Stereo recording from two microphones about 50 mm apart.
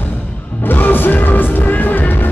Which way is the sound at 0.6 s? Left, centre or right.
Left.